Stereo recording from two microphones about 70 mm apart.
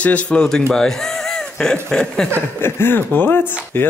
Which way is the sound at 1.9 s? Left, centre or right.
Centre.